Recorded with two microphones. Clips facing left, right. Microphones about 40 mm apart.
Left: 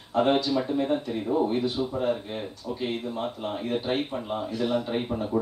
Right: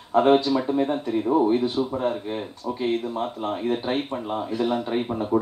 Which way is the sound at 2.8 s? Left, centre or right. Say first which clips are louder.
Right 5 dB; centre.